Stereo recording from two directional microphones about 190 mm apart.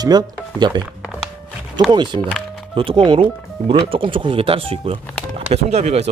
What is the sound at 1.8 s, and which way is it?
Speech, 20° right (ahead or behind).